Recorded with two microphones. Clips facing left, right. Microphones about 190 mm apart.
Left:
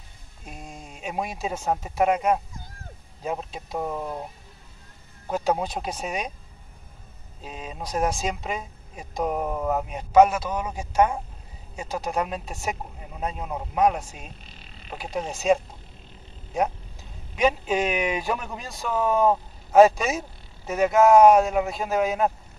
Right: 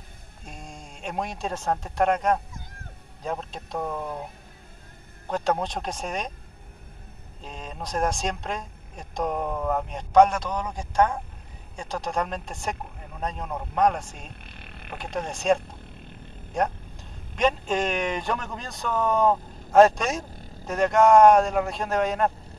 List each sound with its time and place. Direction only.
0.5 s a woman's voice: 5° left (ahead or behind)
5.3 s speech: 5° left (ahead or behind)
7.4 s a woman's voice: 5° left (ahead or behind)
14.4 s frog: 60° right (ahead or behind)
15.0 s a woman's voice: 5° left (ahead or behind)